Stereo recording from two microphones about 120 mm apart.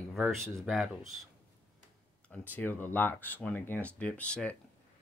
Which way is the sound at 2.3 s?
15° left (ahead or behind).